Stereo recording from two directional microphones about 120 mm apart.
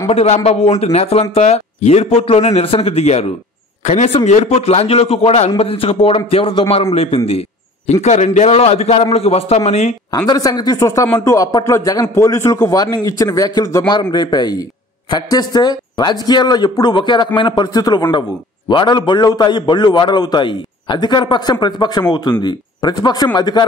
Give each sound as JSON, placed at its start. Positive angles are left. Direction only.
{"t": 0.1, "sound": "a man's voice", "side_deg": 60}
{"t": 3.8, "sound": "a man's voice", "side_deg": 75}
{"t": 10.1, "sound": "a man's voice", "side_deg": 30}